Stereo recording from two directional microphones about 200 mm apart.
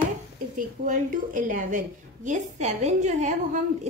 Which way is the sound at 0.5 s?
40° right (ahead or behind).